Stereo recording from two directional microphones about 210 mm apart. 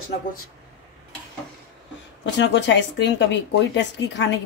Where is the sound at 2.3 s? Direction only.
60° left (ahead or behind).